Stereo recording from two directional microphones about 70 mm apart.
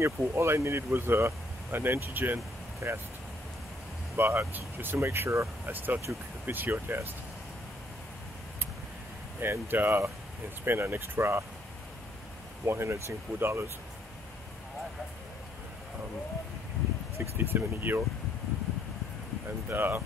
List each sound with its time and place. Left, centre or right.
0.0 s speech: right
4.2 s speech: right
5.7 s speech: right
9.4 s speech: right
12.6 s speech: right
17.2 s speech: right
19.7 s speech: right